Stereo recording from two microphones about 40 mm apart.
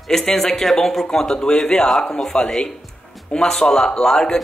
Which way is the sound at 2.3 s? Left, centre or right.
Left.